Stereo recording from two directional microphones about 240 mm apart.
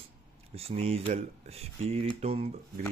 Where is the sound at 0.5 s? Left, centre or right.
Right.